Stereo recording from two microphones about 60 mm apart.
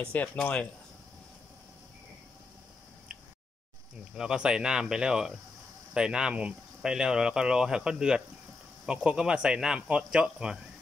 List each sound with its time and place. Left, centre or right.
0.0 s speech: left
4.1 s speech: centre